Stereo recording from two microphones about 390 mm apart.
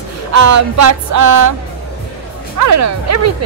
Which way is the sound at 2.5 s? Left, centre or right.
Right.